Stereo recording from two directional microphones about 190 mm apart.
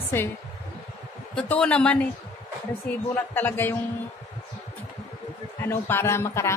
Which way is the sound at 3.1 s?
10° left (ahead or behind).